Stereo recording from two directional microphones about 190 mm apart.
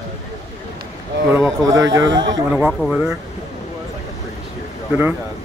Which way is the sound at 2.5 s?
5° right (ahead or behind).